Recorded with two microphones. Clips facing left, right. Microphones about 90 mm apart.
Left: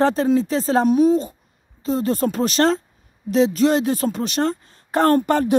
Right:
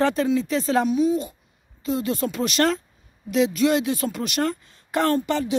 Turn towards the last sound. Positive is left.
turn(degrees=50)  # may be behind; listen again after turning